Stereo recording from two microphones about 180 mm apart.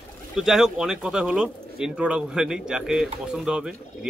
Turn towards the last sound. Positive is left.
turn(degrees=-5)  # may be behind; listen again after turning